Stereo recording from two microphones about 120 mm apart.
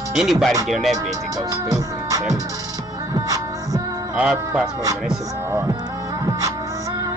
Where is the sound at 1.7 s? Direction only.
30° right (ahead or behind).